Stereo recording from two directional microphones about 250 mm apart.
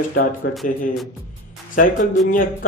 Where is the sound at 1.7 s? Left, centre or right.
Left.